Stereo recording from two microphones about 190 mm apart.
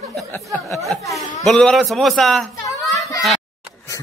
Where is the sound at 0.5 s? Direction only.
15° left (ahead or behind).